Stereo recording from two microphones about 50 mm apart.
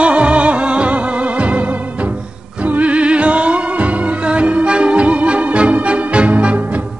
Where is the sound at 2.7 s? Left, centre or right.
Right.